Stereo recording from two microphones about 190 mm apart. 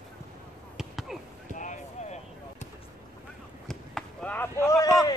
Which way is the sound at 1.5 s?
40° left (ahead or behind).